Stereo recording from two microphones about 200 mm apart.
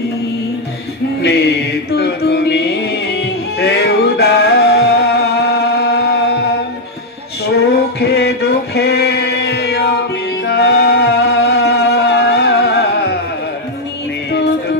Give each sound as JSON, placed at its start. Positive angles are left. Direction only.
{"t": 1.2, "sound": "music", "side_deg": 55}
{"t": 8.0, "sound": "a sound", "side_deg": 55}
{"t": 10.4, "sound": "music", "side_deg": 55}